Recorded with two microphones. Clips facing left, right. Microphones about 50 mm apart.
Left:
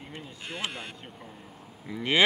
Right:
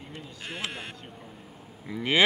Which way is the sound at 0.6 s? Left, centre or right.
Centre.